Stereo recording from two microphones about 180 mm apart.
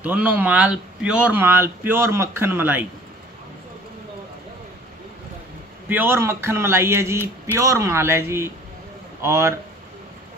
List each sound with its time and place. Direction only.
0.0 s speech: 10° right (ahead or behind)
5.9 s speech: 10° right (ahead or behind)